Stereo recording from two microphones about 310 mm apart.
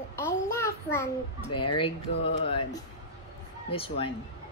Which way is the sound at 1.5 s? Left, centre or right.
Left.